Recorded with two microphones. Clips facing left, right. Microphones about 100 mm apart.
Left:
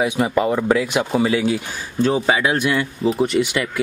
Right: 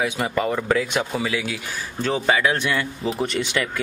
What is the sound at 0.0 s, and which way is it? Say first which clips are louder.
Speech: left 5 dB; 20° left (ahead or behind).